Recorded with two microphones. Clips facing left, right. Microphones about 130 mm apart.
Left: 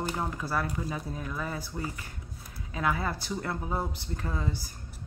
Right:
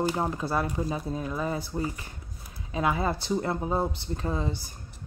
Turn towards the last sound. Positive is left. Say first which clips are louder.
# right 4 dB
turn(degrees=-25)  # may be behind; listen again after turning